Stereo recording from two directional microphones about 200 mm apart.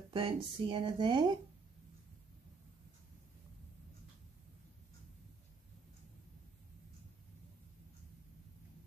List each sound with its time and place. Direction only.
0.1 s speech: 25° right (ahead or behind)